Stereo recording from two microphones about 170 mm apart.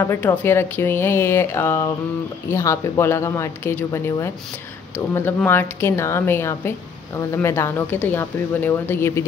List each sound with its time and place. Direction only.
0.0 s speech: 10° left (ahead or behind)